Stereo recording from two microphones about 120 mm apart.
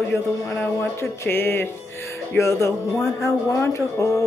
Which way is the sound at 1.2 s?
20° left (ahead or behind).